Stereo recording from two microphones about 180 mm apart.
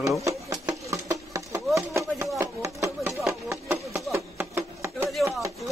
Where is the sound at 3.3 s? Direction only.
15° right (ahead or behind).